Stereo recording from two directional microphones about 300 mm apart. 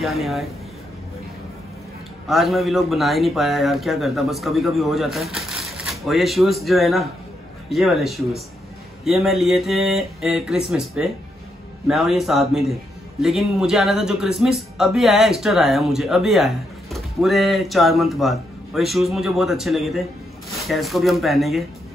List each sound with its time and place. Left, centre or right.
0.0 s speech: centre
2.2 s speech: centre